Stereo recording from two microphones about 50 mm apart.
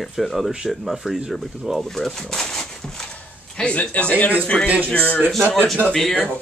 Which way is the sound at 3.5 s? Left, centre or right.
Centre.